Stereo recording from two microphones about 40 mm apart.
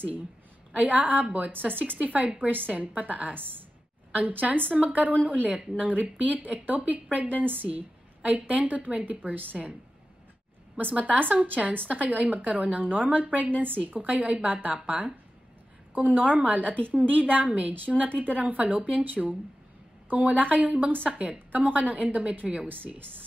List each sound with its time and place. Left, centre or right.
0.7 s a woman's voice: right
1.7 s a woman's voice: right
4.1 s a woman's voice: right
10.8 s a woman's voice: right
11.1 s a woman's voice: right
18.6 s a woman's voice: right
22.7 s a woman's voice: right